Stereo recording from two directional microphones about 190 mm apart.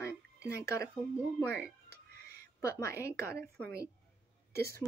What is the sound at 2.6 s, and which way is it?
Speech, 15° left (ahead or behind).